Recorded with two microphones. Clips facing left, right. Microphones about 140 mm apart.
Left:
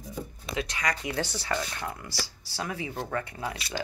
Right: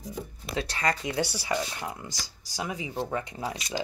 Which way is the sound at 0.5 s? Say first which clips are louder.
Right 2 dB; 35° right (ahead or behind).